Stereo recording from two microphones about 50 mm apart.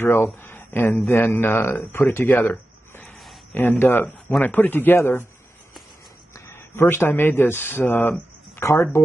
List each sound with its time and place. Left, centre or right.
0.0 s speech: left
4.9 s speech: left
6.3 s speech: left
8.5 s speech: left